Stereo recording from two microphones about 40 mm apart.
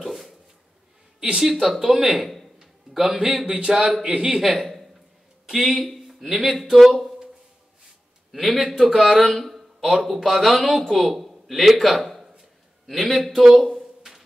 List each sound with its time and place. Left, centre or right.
0.0 s dog: centre
1.4 s speech: centre
2.2 s a sound: centre
3.4 s speech: right
4.4 s a man's voice: centre
5.9 s a sound: centre
6.5 s a man's voice: centre
8.3 s a man's voice: centre
13.6 s a sound: centre